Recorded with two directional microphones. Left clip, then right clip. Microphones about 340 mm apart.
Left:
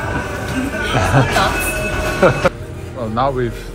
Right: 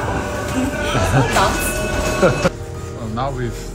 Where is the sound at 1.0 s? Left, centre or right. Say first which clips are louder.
Left 2 dB; centre.